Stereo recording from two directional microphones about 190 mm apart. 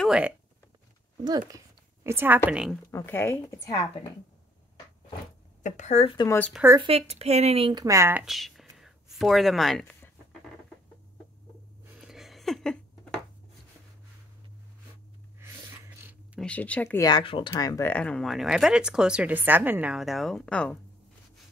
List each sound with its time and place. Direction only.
0.0 s speech: 5° right (ahead or behind)
2.0 s a woman's voice: 10° right (ahead or behind)
2.9 s speech: 15° left (ahead or behind)
5.6 s speech: 40° left (ahead or behind)
6.2 s speech: 10° left (ahead or behind)
6.5 s a woman's voice: 15° right (ahead or behind)
6.8 s speech: 30° right (ahead or behind); by 10.1 s 5° left (ahead or behind)
12.1 s a sound: centre (ahead or behind)
16.3 s speech: 5° left (ahead or behind)
17.0 s speech: 25° left (ahead or behind); by 20.8 s 5° left (ahead or behind)